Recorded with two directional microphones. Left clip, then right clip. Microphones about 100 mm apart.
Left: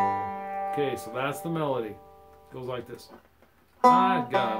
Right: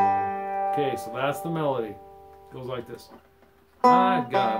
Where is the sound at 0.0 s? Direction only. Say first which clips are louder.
Right 4 dB; 25° left (ahead or behind).